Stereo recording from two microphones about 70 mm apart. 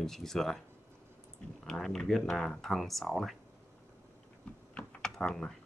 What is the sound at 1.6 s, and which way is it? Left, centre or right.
Speech, centre.